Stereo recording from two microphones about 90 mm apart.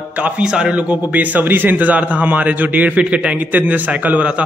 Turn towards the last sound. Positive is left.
turn(degrees=-15)  # may be behind; listen again after turning